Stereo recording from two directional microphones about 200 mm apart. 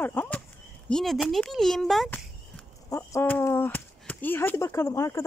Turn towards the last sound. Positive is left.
turn(degrees=15)  # may be behind; listen again after turning